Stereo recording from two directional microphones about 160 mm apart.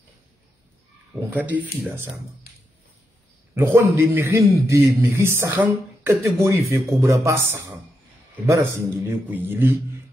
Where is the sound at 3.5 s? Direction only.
15° right (ahead or behind).